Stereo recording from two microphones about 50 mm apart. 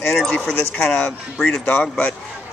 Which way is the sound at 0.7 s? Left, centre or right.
Centre.